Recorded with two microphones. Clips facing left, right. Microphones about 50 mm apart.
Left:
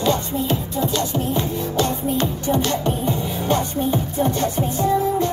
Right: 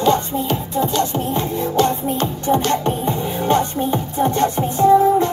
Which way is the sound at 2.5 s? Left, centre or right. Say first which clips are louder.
Right 5 dB; right.